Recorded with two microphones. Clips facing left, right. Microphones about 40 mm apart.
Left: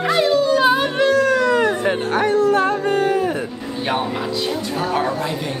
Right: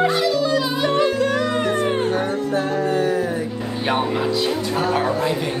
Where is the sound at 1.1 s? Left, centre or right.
Left.